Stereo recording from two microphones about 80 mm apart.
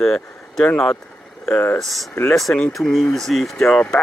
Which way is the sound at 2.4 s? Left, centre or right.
Centre.